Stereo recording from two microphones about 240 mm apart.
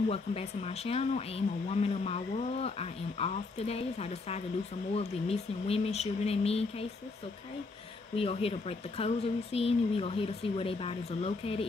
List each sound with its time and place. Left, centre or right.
0.1 s speech: left
8.2 s speech: left